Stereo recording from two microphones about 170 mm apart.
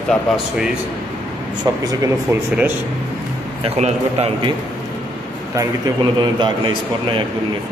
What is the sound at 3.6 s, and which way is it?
Speech, 35° right (ahead or behind).